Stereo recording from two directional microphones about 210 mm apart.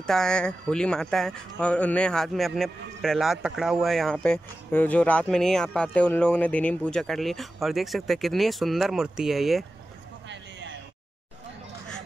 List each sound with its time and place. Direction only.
0.0 s speech: 5° left (ahead or behind)